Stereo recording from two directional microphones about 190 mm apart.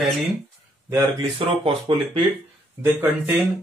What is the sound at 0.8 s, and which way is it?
Speech, 20° right (ahead or behind).